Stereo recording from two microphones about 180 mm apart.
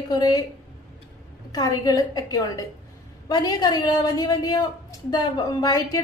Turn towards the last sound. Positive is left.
turn(degrees=20)  # may be behind; listen again after turning